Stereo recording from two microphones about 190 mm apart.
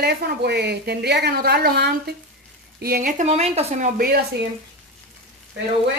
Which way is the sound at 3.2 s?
35° right (ahead or behind).